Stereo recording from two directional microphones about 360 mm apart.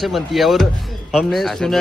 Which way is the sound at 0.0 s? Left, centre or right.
Centre.